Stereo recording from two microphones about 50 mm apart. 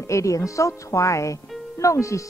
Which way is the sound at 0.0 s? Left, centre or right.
Left.